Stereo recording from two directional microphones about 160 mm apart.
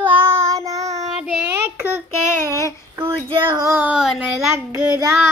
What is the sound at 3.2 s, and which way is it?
Child singing, 30° right (ahead or behind).